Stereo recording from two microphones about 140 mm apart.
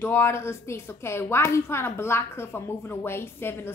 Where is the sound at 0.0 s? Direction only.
20° left (ahead or behind).